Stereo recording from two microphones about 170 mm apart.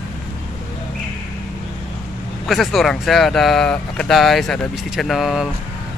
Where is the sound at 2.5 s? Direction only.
Centre (ahead or behind).